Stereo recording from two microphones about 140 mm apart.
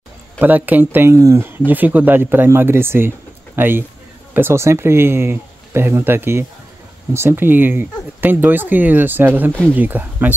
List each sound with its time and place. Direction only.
0.4 s speech: 10° right (ahead or behind)
9.5 s speech: 5° left (ahead or behind)
9.8 s speech: 15° right (ahead or behind)